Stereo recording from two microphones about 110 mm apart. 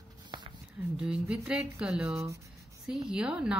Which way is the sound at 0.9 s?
10° right (ahead or behind).